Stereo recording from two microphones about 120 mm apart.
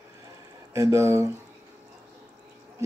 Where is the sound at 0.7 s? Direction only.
25° right (ahead or behind).